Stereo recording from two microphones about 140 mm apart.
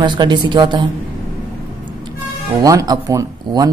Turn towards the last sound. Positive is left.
turn(degrees=-25)  # may be behind; listen again after turning